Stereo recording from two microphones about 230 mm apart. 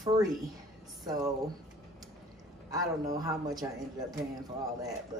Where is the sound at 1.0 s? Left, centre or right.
Centre.